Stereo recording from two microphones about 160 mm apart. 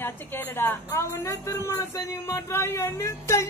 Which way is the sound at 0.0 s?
15° left (ahead or behind).